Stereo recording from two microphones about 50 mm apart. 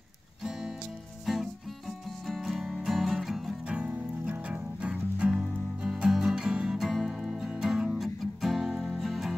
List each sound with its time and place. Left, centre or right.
0.4 s music: centre
3.6 s music: right
6.8 s music: centre
7.9 s music: centre
9.0 s music: centre